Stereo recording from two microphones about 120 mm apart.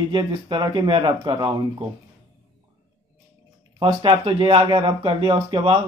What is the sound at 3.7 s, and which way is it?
Speech, 45° right (ahead or behind).